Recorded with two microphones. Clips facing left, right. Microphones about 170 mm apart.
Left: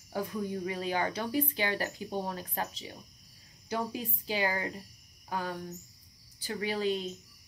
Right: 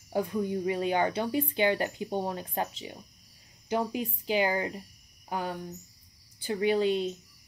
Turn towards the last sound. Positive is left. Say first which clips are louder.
# right 6 dB
turn(degrees=-25)  # may be behind; listen again after turning